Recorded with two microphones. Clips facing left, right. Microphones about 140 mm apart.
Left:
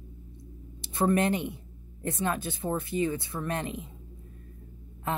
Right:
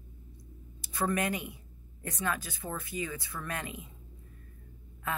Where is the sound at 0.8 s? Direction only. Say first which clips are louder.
Left 6 dB; 25° left (ahead or behind).